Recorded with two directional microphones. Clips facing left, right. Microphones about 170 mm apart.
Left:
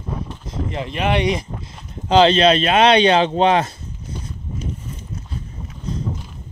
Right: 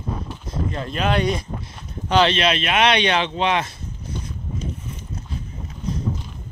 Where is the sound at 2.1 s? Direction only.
30° left (ahead or behind).